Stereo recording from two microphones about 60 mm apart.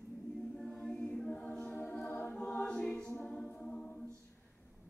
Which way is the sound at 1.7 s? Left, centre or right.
Left.